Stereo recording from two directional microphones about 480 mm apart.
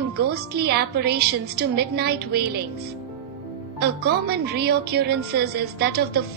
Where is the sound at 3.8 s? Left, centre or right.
Centre.